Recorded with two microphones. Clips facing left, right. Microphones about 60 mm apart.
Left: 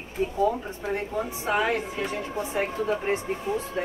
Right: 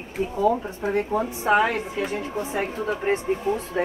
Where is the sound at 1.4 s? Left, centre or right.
Right.